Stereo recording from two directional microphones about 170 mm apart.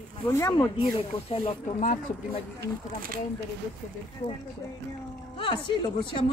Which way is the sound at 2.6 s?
60° right (ahead or behind).